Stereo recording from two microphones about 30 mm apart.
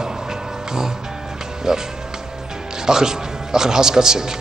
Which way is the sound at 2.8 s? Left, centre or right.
Centre.